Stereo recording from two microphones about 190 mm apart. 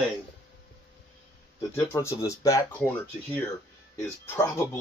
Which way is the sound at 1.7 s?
15° left (ahead or behind).